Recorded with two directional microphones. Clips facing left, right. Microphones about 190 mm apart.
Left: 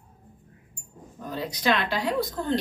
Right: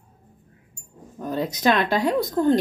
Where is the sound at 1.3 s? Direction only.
45° right (ahead or behind).